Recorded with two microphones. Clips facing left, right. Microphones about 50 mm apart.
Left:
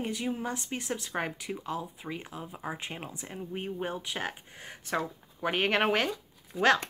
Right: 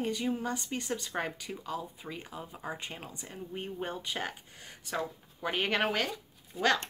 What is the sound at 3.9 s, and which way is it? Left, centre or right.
Speech, centre.